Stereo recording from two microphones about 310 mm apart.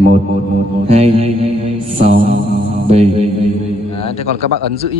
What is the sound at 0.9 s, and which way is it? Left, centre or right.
Mantra, centre.